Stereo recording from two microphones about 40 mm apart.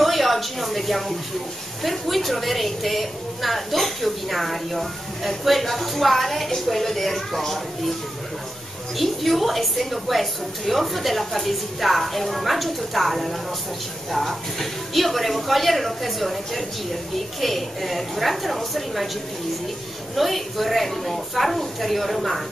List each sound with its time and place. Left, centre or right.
0.0 s a woman's voice: centre
8.9 s a woman's voice: centre
20.2 s a woman's voice: centre